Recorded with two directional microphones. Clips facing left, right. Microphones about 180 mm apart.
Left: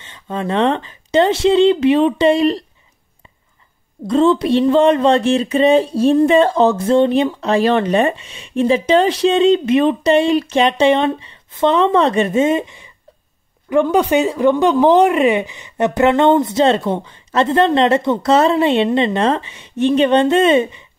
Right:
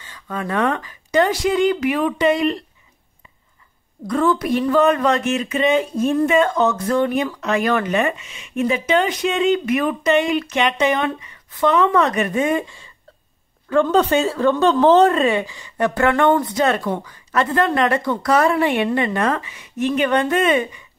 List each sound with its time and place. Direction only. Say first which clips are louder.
0.0 s speech: left 4 dB; 25° left (ahead or behind)
4.1 s speech: left 5 dB; 25° left (ahead or behind)